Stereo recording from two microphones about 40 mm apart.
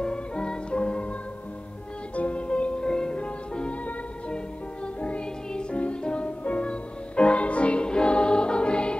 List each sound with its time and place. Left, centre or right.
0.0 s music: left
2.1 s music: left
2.8 s music: centre
3.2 s music: left